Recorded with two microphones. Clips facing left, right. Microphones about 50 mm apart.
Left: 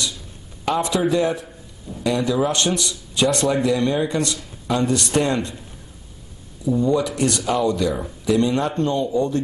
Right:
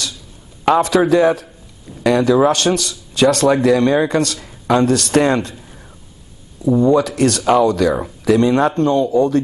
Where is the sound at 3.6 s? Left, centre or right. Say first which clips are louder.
Right 6 dB; right.